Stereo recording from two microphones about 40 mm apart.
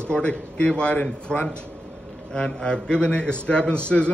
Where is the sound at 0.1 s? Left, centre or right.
Left.